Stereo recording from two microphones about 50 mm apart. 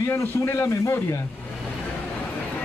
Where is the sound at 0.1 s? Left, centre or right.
Left.